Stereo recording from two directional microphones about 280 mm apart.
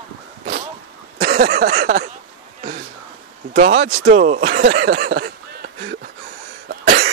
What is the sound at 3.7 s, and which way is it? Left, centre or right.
Speech, right.